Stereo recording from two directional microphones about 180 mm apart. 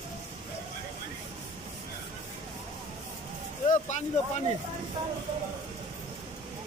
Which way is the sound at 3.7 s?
40° left (ahead or behind).